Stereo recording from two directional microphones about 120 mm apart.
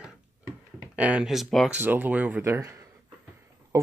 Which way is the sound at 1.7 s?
15° right (ahead or behind).